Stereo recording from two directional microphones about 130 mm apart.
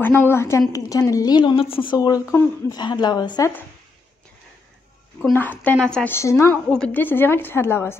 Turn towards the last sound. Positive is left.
turn(degrees=20)  # may be behind; listen again after turning